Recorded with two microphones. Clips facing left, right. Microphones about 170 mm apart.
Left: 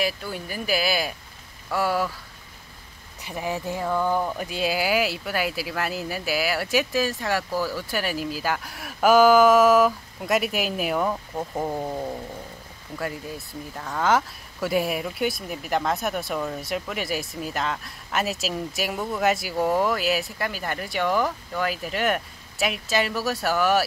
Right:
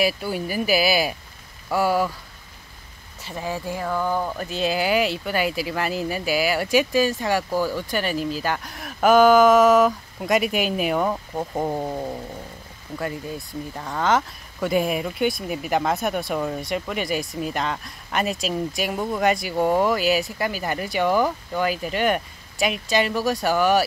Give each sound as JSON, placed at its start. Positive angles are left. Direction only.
{"t": 0.0, "sound": "speech", "side_deg": -10}
{"t": 3.2, "sound": "speech", "side_deg": 15}
{"t": 3.8, "sound": "speech", "side_deg": -5}
{"t": 11.0, "sound": "speech", "side_deg": -10}
{"t": 13.7, "sound": "speech", "side_deg": -5}
{"t": 14.0, "sound": "speech", "side_deg": 5}